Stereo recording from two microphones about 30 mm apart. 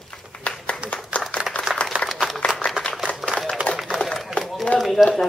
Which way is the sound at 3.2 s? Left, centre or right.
Centre.